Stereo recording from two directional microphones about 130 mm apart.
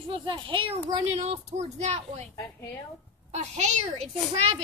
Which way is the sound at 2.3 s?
20° left (ahead or behind).